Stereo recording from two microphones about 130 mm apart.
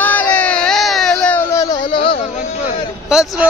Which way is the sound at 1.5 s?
25° left (ahead or behind).